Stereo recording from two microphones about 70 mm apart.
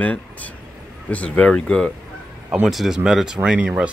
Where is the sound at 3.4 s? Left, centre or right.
Centre.